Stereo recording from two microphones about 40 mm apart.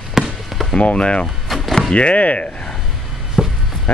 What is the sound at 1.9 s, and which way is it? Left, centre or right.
Speech, left.